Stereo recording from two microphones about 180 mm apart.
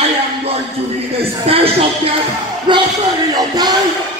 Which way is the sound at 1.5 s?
30° right (ahead or behind).